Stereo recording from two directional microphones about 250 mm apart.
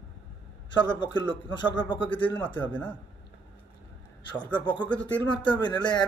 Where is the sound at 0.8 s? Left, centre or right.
Centre.